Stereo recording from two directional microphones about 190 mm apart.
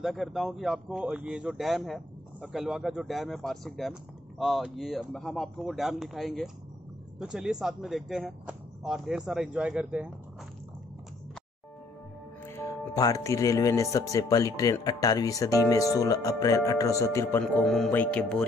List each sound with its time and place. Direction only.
0.0 s speech: centre (ahead or behind)
12.4 s speech: 15° left (ahead or behind)